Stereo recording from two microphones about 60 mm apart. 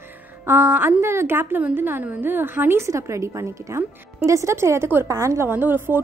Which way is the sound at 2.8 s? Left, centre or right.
Right.